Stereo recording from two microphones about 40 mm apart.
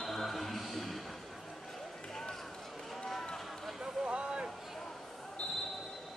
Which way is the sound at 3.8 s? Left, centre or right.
Right.